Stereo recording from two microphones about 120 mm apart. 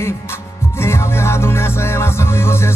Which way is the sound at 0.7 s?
20° left (ahead or behind).